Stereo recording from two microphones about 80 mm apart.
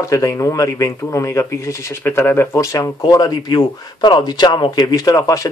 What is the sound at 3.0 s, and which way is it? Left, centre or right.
Speech, left.